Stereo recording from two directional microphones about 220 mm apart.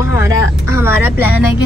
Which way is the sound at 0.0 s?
10° right (ahead or behind).